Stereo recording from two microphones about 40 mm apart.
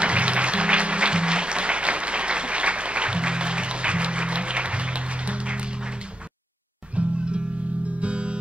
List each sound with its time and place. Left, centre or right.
0.0 s music: right
7.0 s music: right